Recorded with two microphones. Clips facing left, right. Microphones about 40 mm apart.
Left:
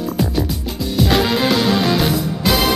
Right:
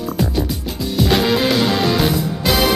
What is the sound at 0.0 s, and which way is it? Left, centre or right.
Music, centre.